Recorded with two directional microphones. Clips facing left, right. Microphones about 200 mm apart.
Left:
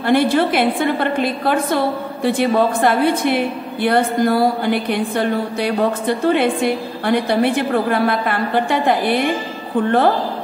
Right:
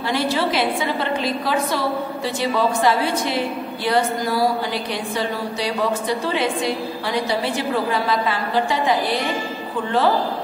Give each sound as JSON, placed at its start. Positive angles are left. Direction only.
{"t": 0.0, "sound": "a woman's voice", "side_deg": 55}